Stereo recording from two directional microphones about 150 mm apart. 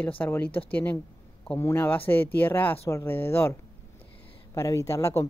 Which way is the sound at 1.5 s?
15° left (ahead or behind).